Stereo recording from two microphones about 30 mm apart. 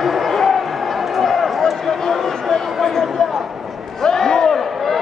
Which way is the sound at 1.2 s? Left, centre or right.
Centre.